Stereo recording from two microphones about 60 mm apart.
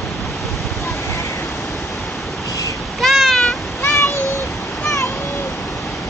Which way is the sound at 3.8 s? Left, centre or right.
Left.